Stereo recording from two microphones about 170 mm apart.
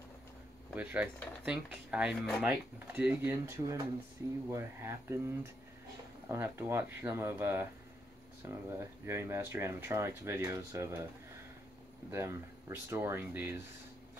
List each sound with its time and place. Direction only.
0.7 s speech: 10° right (ahead or behind)
12.1 s speech: 15° right (ahead or behind)